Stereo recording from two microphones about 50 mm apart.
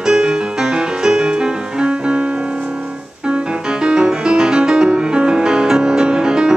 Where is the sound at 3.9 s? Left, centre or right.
Centre.